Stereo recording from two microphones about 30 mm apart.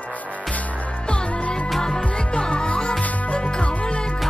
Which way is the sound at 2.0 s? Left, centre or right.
Left.